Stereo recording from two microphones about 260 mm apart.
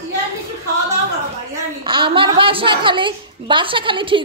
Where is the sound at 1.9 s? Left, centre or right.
Centre.